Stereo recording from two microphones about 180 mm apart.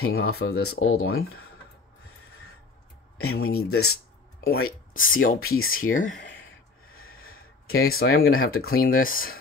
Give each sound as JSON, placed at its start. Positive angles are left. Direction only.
{"t": 0.0, "sound": "speech", "side_deg": 60}
{"t": 3.3, "sound": "speech", "side_deg": 60}
{"t": 4.5, "sound": "speech", "side_deg": 75}
{"t": 5.2, "sound": "speech", "side_deg": 50}
{"t": 7.2, "sound": "speech", "side_deg": 55}